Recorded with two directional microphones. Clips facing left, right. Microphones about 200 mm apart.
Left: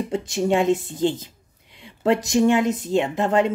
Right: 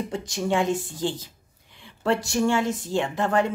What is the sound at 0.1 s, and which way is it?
A woman's voice, 25° left (ahead or behind).